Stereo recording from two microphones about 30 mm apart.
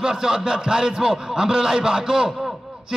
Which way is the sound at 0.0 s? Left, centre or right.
Right.